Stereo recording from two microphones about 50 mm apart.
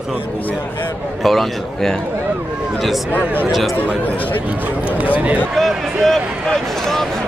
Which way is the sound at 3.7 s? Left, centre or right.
Left.